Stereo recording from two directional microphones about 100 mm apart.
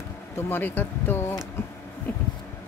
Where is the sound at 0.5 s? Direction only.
20° left (ahead or behind).